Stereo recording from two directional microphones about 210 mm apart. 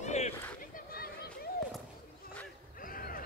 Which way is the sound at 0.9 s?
45° left (ahead or behind).